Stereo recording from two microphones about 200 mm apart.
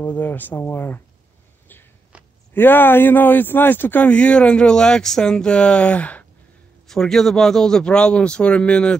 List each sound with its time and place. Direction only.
0.0 s speech: 10° left (ahead or behind)
2.1 s a sound: 5° right (ahead or behind)
2.5 s speech: 10° left (ahead or behind)